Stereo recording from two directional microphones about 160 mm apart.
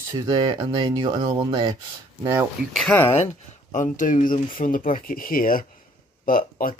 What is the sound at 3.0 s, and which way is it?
Speech, 35° left (ahead or behind).